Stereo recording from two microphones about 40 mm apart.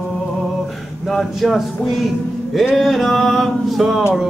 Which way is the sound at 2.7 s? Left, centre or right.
Centre.